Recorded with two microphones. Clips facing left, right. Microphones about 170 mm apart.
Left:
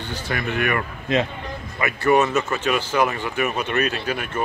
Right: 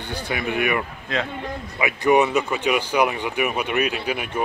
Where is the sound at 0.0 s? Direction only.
15° right (ahead or behind).